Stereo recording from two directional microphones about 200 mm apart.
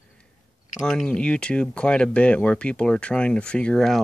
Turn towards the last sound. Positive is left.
turn(degrees=0)  # may be behind; listen again after turning